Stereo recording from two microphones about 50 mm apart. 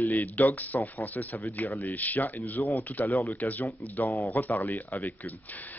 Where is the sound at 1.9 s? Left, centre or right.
Left.